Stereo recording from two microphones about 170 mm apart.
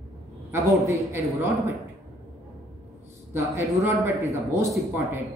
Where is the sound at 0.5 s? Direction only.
15° right (ahead or behind).